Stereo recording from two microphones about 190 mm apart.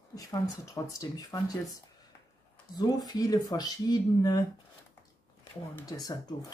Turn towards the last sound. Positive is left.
turn(degrees=20)  # may be behind; listen again after turning